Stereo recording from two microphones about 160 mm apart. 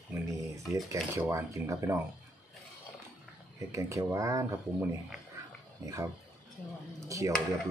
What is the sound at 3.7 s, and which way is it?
Speech, 20° right (ahead or behind).